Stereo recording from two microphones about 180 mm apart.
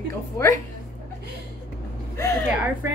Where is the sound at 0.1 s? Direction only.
20° left (ahead or behind).